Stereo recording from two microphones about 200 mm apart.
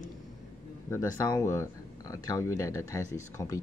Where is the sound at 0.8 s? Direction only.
15° left (ahead or behind).